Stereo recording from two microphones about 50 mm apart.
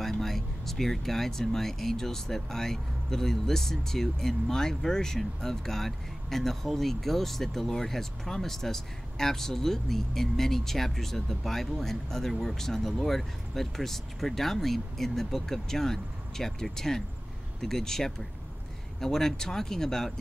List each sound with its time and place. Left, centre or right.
0.0 s speech: centre